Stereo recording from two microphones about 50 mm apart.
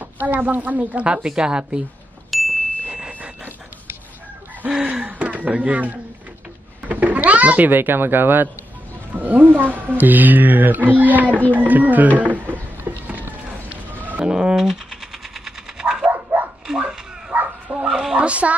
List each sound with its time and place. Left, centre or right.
0.0 s a woman's voice: right
1.0 s a woman's voice: centre
2.3 s ding: centre
2.9 s a sound: right
4.6 s gasp: centre
6.9 s speech: right
11.2 s speech: left
11.5 s speech: right
12.2 s a sound: right
14.2 s a sound: centre
15.8 s dog: centre
16.6 s a sound: centre
17.8 s speech: centre
18.1 s speech: right